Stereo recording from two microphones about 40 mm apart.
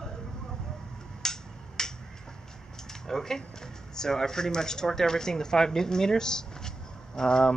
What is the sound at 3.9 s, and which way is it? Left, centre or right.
Speech, centre.